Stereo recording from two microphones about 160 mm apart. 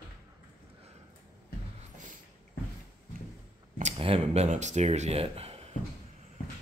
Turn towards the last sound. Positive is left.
turn(degrees=-40)  # may be behind; listen again after turning